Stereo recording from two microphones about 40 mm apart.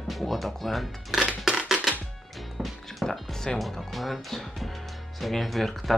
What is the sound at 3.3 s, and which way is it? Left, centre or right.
Speech, centre.